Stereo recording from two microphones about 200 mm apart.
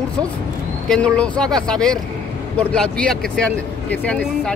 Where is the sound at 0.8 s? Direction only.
5° left (ahead or behind).